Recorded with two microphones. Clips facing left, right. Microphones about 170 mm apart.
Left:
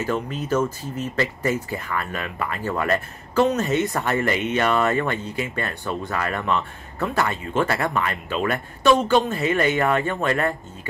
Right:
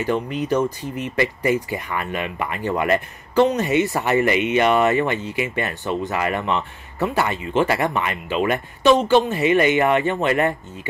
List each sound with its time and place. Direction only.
0.0 s speech: 15° right (ahead or behind)